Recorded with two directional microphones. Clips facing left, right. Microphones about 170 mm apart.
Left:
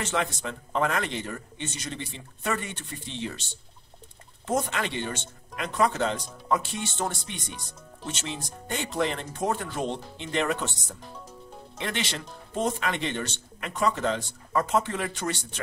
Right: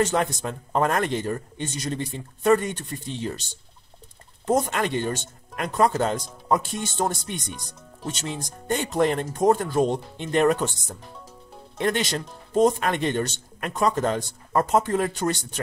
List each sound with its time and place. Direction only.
0.0 s speech: 45° right (ahead or behind)
4.5 s speech: 40° right (ahead or behind)
8.6 s speech: 45° right (ahead or behind)
11.8 s speech: 45° right (ahead or behind)